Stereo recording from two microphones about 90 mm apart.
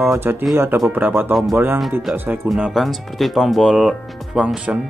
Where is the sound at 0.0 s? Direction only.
25° right (ahead or behind).